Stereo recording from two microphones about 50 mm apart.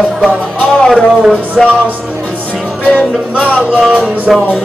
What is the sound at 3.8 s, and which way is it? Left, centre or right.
Music, right.